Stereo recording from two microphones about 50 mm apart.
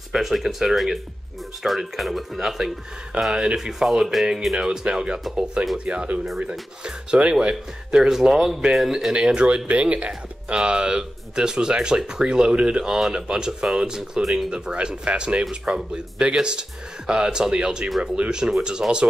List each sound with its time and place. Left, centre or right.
0.1 s speech: centre
6.8 s speech: right; by 9.1 s centre
9.1 s speech: centre
14.2 s speech: centre
14.5 s speech: centre